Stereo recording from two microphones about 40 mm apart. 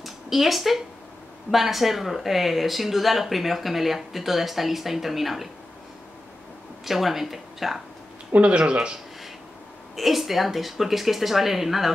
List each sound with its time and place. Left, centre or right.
0.0 s speech: centre
6.8 s speech: centre
8.4 s speech: right
9.9 s speech: centre